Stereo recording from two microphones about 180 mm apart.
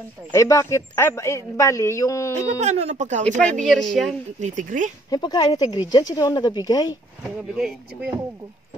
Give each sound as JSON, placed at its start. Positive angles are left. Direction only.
{"t": 0.3, "sound": "a man's voice", "side_deg": 15}
{"t": 2.6, "sound": "speech", "side_deg": -40}
{"t": 3.6, "sound": "a woman's voice", "side_deg": 0}
{"t": 4.4, "sound": "speech", "side_deg": -45}
{"t": 5.1, "sound": "speech", "side_deg": 20}
{"t": 7.5, "sound": "a woman's voice", "side_deg": -5}